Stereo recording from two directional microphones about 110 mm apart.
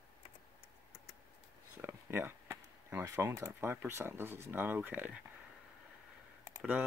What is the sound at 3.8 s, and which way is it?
Speech, 20° right (ahead or behind).